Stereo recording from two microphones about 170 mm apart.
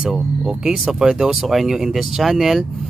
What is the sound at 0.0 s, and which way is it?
Speech, 5° right (ahead or behind).